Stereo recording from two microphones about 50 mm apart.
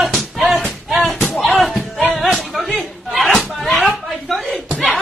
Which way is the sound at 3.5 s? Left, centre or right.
Centre.